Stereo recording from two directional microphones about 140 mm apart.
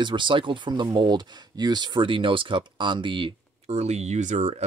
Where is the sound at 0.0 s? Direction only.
35° right (ahead or behind).